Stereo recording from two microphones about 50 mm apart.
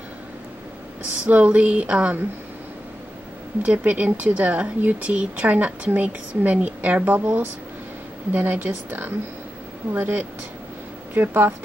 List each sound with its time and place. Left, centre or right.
1.2 s a woman's voice: right
3.6 s a woman's voice: right
8.3 s speech: right